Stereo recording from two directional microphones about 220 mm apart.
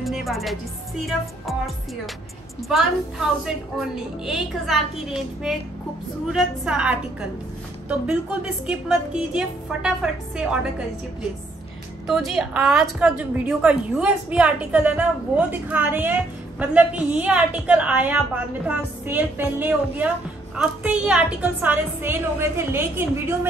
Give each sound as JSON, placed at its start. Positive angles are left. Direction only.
{"t": 0.0, "sound": "a woman's voice", "side_deg": 0}
{"t": 2.7, "sound": "a woman's voice", "side_deg": 0}
{"t": 12.1, "sound": "a woman's voice", "side_deg": 0}